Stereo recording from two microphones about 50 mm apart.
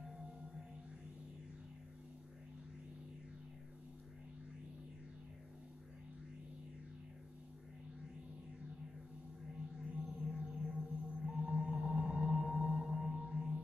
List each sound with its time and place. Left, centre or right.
0.0 s music: centre
9.5 s music: centre
13.1 s music: right